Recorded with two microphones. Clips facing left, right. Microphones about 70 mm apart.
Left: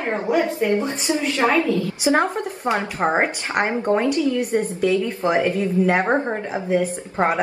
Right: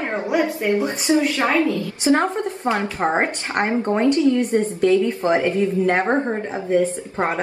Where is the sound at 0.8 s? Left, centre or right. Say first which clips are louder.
Right 4 dB; right.